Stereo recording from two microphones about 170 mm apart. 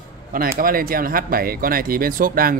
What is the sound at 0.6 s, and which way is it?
Speech, 60° right (ahead or behind).